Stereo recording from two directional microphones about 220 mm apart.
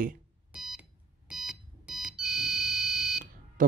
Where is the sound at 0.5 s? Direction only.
5° right (ahead or behind).